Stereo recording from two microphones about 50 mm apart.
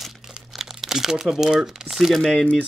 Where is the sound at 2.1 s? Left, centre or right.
Centre.